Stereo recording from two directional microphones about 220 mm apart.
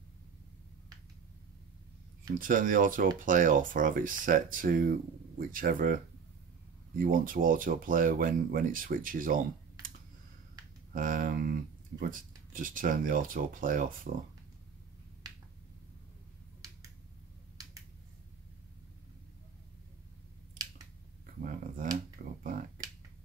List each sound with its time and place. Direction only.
2.3 s speech: 40° right (ahead or behind)
7.0 s speech: 40° right (ahead or behind)
21.4 s a sound: 40° right (ahead or behind)
22.4 s finger snapping: 40° right (ahead or behind)